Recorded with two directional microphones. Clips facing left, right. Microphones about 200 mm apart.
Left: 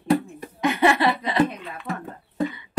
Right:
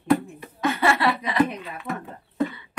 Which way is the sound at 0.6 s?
20° left (ahead or behind).